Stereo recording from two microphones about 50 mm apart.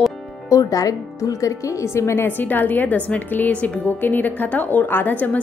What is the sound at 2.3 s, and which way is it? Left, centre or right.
Speech, left.